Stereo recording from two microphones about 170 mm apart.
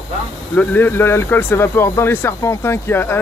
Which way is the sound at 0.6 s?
10° left (ahead or behind).